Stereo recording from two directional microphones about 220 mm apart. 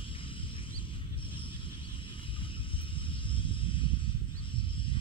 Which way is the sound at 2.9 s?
25° left (ahead or behind).